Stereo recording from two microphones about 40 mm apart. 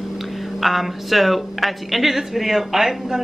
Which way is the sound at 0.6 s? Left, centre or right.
Centre.